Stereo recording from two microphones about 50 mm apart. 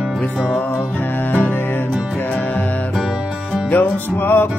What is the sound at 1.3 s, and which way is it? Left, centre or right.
Music, left.